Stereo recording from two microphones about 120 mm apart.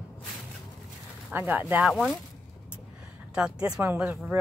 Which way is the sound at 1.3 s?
15° right (ahead or behind).